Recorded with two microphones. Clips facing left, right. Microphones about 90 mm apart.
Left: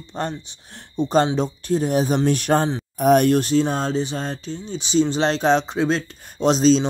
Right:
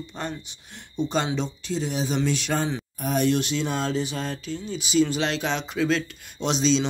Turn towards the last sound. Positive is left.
turn(degrees=40)  # may be behind; listen again after turning